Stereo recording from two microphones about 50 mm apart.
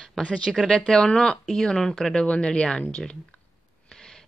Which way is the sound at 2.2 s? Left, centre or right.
Left.